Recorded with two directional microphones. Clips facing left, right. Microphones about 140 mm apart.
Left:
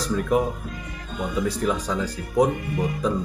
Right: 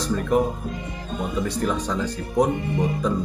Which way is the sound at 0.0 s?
Centre (ahead or behind).